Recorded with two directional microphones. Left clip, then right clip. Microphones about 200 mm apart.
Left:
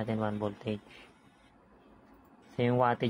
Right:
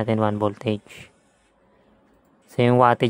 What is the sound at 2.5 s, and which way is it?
Speech, 55° right (ahead or behind).